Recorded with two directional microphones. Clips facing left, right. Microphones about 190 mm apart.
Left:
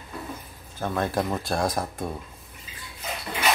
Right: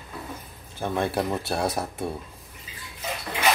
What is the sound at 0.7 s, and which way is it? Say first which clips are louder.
Speech: even; 10° right (ahead or behind).